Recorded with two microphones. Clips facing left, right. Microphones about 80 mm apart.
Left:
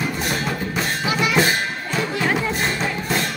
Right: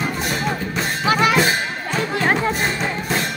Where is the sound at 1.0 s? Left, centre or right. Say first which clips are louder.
Right 5 dB; right.